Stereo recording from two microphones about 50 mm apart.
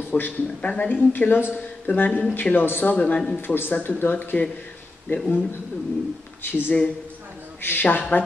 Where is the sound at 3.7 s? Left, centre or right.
Left.